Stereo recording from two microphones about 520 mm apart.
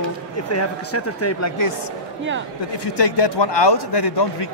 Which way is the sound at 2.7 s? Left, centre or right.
Left.